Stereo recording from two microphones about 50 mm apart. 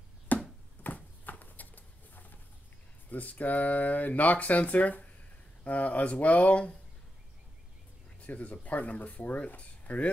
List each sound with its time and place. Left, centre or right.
0.3 s a sound: left
3.1 s speech: left
8.2 s speech: left